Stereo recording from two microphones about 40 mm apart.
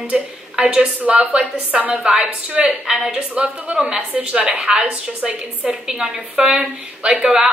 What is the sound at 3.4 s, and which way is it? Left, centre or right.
A woman's voice, right.